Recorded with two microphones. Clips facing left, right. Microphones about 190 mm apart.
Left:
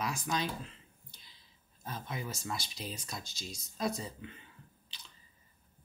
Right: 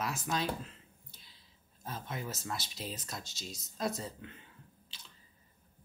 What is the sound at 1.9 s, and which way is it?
Speech, centre (ahead or behind).